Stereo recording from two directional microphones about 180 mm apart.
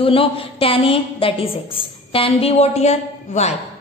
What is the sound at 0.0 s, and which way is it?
A woman's voice, 30° left (ahead or behind).